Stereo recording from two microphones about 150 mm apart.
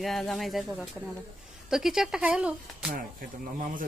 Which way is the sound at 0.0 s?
Centre (ahead or behind).